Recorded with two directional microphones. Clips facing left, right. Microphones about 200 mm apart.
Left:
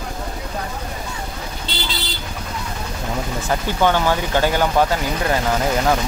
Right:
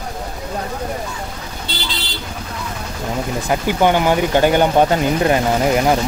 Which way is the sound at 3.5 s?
15° right (ahead or behind).